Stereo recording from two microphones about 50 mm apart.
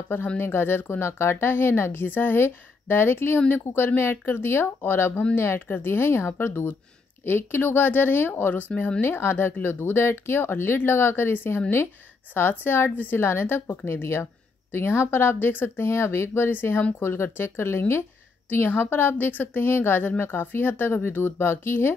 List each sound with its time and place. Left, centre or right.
0.4 s a woman's voice: left
3.3 s a woman's voice: left
9.0 s a woman's voice: left
15.8 s speech: left
18.5 s a woman's voice: left